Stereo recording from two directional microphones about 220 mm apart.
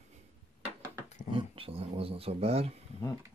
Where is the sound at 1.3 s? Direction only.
25° right (ahead or behind).